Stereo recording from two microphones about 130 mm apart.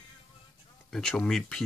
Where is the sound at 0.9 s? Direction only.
5° left (ahead or behind).